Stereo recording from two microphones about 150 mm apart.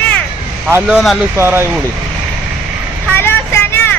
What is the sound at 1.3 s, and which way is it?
Speech, 15° right (ahead or behind).